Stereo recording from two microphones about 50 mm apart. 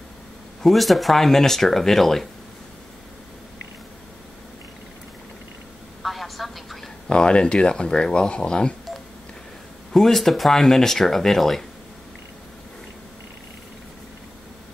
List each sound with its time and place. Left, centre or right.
0.6 s speech: centre
6.0 s a sound: centre
7.1 s speech: centre
9.9 s speech: centre